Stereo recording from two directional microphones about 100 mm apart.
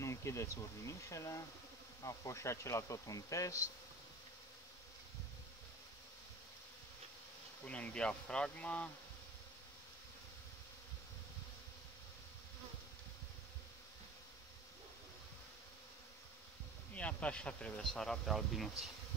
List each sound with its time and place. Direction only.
0.0 s speech: 30° left (ahead or behind)
7.6 s speech: 15° left (ahead or behind)
16.9 s speech: 15° left (ahead or behind)